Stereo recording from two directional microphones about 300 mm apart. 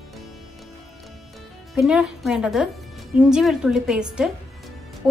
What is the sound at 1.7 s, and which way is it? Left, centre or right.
Speech, centre.